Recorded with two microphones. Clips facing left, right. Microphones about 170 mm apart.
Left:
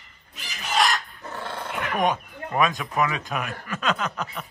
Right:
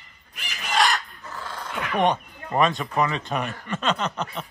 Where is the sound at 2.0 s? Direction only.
Centre (ahead or behind).